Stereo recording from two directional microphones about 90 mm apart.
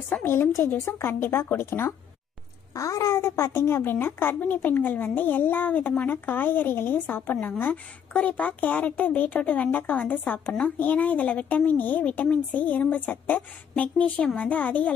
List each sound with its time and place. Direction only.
0.2 s a woman's voice: 25° left (ahead or behind)